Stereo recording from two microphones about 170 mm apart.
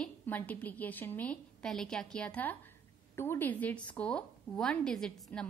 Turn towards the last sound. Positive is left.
turn(degrees=5)  # may be behind; listen again after turning